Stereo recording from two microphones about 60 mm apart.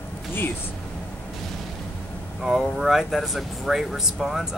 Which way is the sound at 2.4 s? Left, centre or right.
Centre.